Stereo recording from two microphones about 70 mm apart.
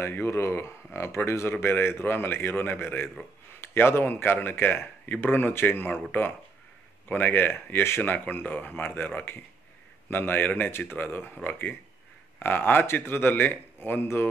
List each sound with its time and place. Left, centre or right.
0.0 s speech: left
7.1 s speech: left
12.4 s speech: left